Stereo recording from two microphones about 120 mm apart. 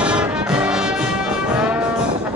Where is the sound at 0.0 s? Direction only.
10° right (ahead or behind).